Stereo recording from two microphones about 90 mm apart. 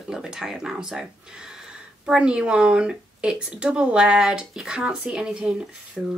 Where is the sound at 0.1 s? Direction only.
5° right (ahead or behind).